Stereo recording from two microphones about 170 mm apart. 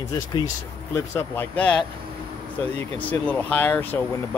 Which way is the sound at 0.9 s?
15° left (ahead or behind).